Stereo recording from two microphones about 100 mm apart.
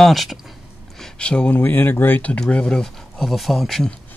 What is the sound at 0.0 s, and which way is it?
Speech, centre (ahead or behind).